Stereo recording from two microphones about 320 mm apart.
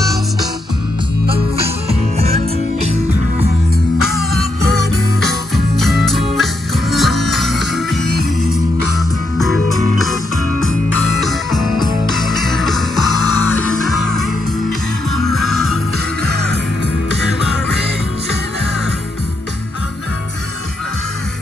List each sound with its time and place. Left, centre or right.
1.9 s music: centre
5.5 s music: centre
11.1 s music: centre